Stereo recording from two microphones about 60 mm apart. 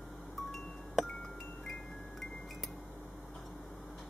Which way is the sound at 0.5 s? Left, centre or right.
Centre.